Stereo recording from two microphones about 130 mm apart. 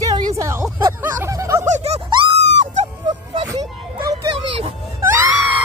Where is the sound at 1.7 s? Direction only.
55° right (ahead or behind).